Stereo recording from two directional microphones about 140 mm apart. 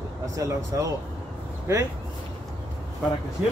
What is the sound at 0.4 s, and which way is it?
Speech, 25° right (ahead or behind).